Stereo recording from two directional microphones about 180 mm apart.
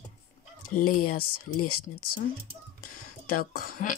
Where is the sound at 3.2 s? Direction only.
55° left (ahead or behind).